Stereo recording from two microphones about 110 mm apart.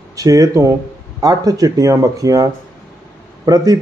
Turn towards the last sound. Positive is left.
turn(degrees=-35)  # may be behind; listen again after turning